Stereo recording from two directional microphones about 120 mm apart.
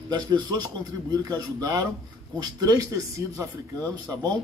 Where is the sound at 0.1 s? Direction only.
35° right (ahead or behind).